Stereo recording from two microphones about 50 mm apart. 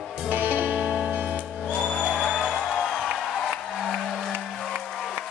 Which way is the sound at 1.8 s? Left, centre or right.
Centre.